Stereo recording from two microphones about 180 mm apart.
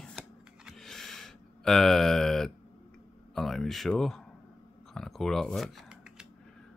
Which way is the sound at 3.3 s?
Centre (ahead or behind).